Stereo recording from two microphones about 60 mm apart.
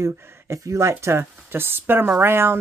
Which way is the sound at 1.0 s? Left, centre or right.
Right.